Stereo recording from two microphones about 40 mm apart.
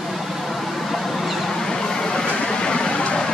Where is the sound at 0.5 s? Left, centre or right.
Centre.